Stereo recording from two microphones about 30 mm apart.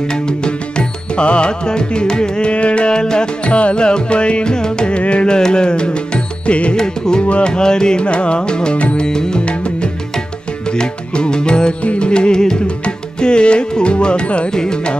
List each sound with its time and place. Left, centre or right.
0.0 s music: left
2.5 s music: left
2.9 s music: left
3.4 s music: left
5.3 s music: left
6.8 s music: left
8.0 s music: left
9.5 s music: left
11.8 s music: left
12.1 s music: left
14.5 s music: left